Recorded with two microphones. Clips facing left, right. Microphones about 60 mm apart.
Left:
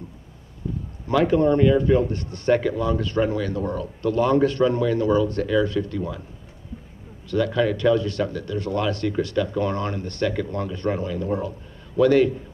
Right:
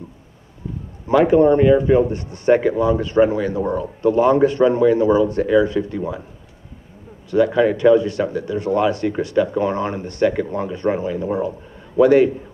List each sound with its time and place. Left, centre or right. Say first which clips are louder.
1.0 s speech: right 6 dB; centre
7.2 s speech: right 6 dB; centre